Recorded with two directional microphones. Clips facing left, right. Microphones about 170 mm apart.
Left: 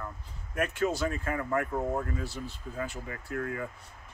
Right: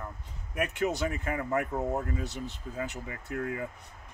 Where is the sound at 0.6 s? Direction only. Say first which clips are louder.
Left 1 dB; 20° right (ahead or behind).